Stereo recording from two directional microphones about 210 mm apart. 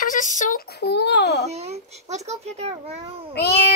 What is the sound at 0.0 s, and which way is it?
A child's voice, 40° left (ahead or behind).